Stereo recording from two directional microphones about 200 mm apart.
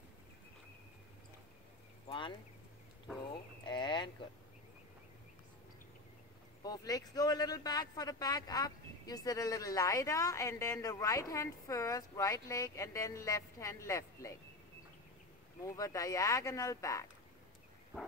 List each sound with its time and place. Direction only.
2.0 s a sound: 25° left (ahead or behind)
3.6 s speech: 25° left (ahead or behind)
6.6 s speech: 20° left (ahead or behind)
15.6 s speech: 15° left (ahead or behind)